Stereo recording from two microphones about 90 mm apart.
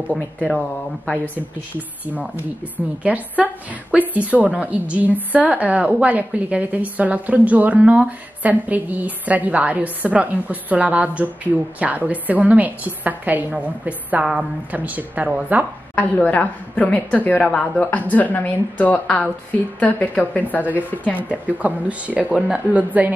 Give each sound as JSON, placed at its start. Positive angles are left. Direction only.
{"t": 0.1, "sound": "a woman's voice", "side_deg": 10}
{"t": 1.3, "sound": "a woman's voice", "side_deg": -20}
{"t": 15.9, "sound": "a woman's voice", "side_deg": 20}
{"t": 21.3, "sound": "a woman's voice", "side_deg": -15}